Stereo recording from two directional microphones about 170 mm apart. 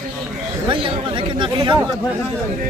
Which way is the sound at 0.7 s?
30° right (ahead or behind).